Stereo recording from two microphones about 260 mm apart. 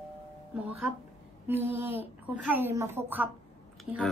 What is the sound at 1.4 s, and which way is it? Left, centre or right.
A woman's voice, centre.